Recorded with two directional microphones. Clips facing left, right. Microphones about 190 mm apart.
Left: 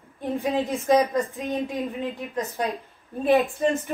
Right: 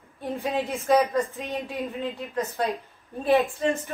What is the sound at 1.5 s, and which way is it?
Speech, 15° left (ahead or behind).